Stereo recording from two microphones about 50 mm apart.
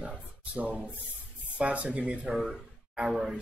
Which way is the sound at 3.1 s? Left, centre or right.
Centre.